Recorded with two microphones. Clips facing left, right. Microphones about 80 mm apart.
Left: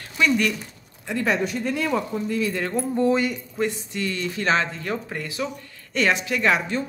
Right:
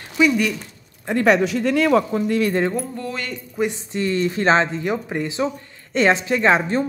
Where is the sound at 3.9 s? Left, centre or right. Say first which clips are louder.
Right 6 dB; right.